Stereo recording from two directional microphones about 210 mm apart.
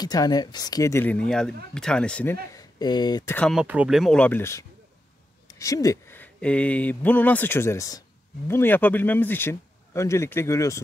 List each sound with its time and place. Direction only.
0.0 s speech: 20° left (ahead or behind)
2.5 s speech: 20° left (ahead or behind)
3.3 s speech: 5° left (ahead or behind)